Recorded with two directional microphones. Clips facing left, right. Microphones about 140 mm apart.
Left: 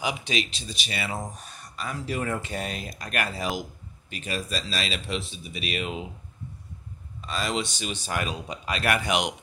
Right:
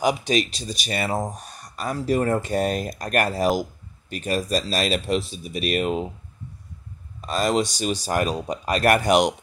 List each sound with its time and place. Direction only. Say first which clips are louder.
0.0 s speech: right 8 dB; 45° right (ahead or behind)
7.2 s speech: right 7 dB; 45° right (ahead or behind)